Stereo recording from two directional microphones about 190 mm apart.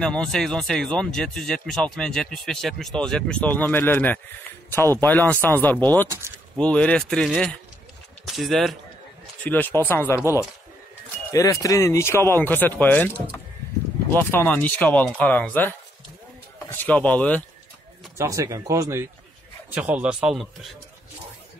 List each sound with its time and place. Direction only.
0.0 s speech: 5° left (ahead or behind)
6.0 s speech: 15° right (ahead or behind)
6.6 s speech: 5° left (ahead or behind)
11.3 s speech: 15° left (ahead or behind)
14.1 s speech: 10° left (ahead or behind)
16.7 s speech: 10° left (ahead or behind)
18.1 s speech: 15° right (ahead or behind)